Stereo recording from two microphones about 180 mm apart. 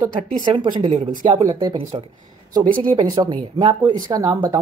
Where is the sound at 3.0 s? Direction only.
20° right (ahead or behind).